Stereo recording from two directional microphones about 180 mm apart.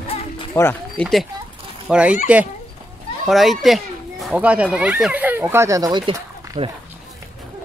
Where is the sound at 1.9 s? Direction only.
5° right (ahead or behind).